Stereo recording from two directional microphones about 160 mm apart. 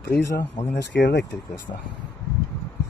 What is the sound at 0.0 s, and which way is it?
Speech, 85° left.